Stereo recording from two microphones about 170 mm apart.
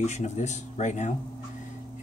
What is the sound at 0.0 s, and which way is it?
Speech, 45° left (ahead or behind).